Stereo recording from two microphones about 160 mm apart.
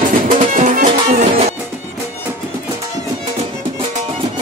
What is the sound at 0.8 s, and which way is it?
Music, 40° right (ahead or behind).